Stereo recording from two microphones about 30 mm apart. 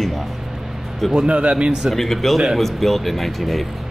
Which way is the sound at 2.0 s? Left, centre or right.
Centre.